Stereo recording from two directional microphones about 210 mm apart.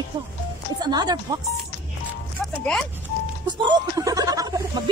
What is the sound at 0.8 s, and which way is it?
Speech, 20° right (ahead or behind).